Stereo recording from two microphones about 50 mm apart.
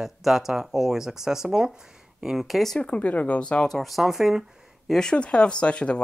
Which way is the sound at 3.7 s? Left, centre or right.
Centre.